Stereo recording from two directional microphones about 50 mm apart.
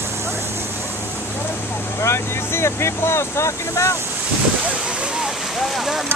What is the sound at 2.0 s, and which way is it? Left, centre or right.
Speech, left.